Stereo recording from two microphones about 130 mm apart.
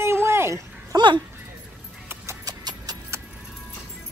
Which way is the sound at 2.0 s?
20° right (ahead or behind).